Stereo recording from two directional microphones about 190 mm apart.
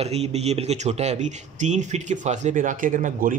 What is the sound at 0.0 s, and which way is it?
Speech, 35° right (ahead or behind).